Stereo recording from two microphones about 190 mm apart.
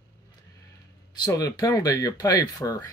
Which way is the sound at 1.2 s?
20° left (ahead or behind).